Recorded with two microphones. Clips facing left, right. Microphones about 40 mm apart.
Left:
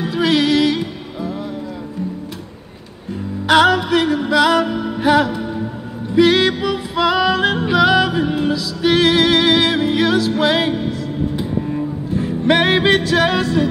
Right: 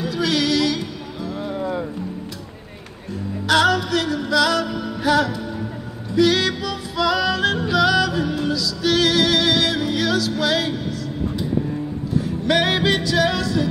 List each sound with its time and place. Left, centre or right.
0.0 s music: left
3.4 s music: left
12.1 s music: left